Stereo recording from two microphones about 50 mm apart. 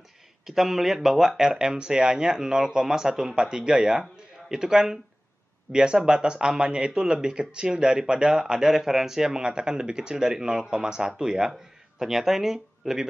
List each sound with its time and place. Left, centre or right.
0.5 s speech: centre